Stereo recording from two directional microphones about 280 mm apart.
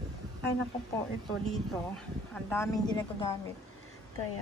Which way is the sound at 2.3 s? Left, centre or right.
Centre.